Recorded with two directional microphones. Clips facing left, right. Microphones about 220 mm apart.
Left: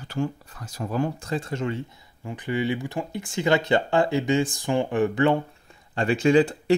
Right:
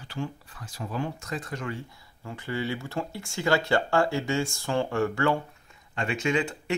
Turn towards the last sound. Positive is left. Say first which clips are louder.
# left 8 dB
turn(degrees=35)  # may be behind; listen again after turning